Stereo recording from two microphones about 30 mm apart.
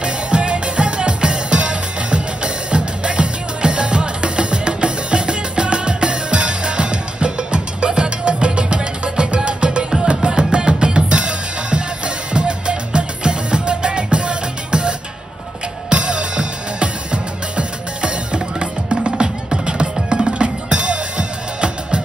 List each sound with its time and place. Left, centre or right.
0.0 s music: right
10.0 s drum: right
12.3 s music: right